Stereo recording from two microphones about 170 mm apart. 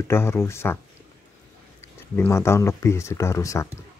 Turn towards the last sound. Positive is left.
turn(degrees=15)  # may be behind; listen again after turning